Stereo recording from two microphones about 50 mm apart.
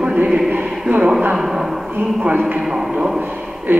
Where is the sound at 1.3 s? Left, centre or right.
Centre.